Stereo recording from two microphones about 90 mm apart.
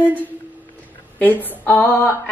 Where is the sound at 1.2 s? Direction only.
20° left (ahead or behind).